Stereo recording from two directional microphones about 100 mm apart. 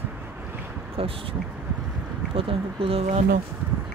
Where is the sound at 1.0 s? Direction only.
65° right (ahead or behind).